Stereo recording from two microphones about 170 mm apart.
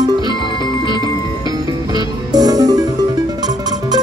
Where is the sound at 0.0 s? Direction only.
25° right (ahead or behind).